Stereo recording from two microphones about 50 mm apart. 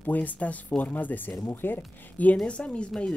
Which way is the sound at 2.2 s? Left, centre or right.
Left.